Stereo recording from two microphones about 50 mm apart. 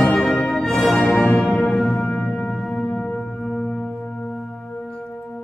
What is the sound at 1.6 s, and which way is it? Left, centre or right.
Music, centre.